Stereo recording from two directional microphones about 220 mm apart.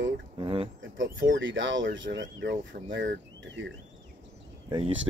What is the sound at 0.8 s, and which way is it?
Speech, 60° right (ahead or behind).